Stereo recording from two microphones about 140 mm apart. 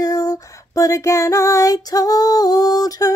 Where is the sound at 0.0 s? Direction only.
25° left (ahead or behind).